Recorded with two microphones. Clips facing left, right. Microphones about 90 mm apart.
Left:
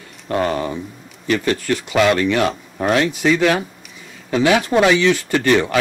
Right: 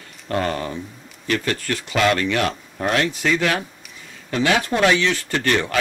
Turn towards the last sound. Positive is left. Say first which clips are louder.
# left 5 dB
turn(degrees=10)  # may be behind; listen again after turning